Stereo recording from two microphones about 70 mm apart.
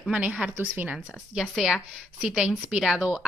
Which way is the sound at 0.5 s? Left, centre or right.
Right.